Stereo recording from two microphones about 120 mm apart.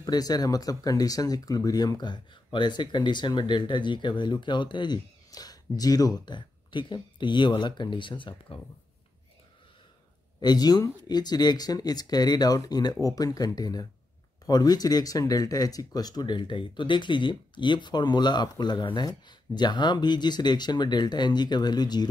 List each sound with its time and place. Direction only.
0.0 s speech: 35° left (ahead or behind)
10.4 s speech: 35° left (ahead or behind)